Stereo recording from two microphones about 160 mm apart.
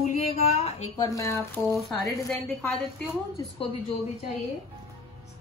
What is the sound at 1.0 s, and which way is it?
Speech, 20° left (ahead or behind).